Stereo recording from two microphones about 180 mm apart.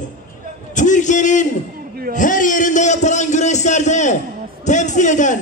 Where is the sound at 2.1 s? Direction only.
45° left (ahead or behind).